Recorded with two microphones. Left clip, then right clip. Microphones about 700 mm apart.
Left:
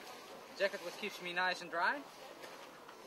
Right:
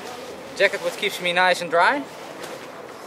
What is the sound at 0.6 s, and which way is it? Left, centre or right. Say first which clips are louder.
Speech: right 17 dB; right.